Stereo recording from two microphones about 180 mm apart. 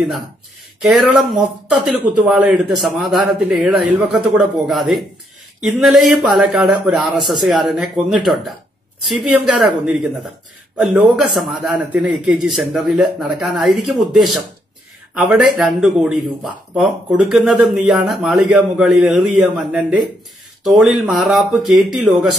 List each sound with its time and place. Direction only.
0.8 s speech: 5° right (ahead or behind)
9.0 s speech: centre (ahead or behind)